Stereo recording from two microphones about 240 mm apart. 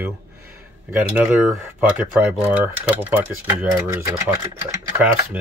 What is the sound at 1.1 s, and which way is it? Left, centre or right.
Speech, centre.